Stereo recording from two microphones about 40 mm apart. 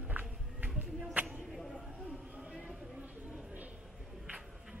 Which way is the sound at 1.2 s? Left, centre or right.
Right.